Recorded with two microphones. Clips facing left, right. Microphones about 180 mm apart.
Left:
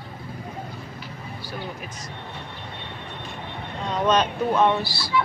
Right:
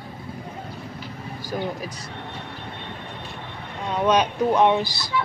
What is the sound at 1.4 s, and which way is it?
Speech, 40° right (ahead or behind).